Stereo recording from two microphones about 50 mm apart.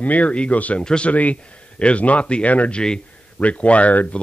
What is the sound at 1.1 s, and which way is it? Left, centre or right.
Speech, left.